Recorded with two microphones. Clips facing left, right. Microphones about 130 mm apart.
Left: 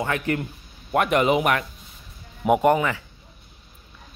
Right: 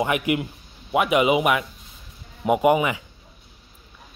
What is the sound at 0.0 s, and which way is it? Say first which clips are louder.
Speech: right 3 dB; 15° right (ahead or behind).